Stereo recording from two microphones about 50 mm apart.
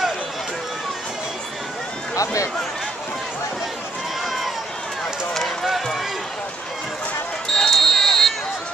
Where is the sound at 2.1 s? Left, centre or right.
Left.